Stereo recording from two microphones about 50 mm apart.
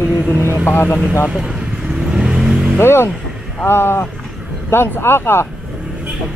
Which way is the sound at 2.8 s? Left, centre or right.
Left.